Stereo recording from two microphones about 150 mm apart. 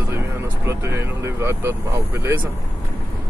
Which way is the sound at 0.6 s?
15° right (ahead or behind).